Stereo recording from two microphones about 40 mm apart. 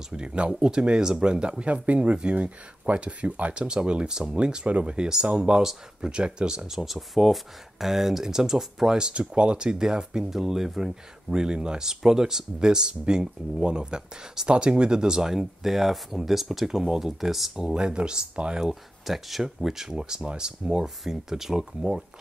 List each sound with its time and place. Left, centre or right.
0.1 s speech: right
4.6 s speech: right
5.0 s speech: centre
8.9 s speech: right
11.2 s speech: centre
17.7 s speech: right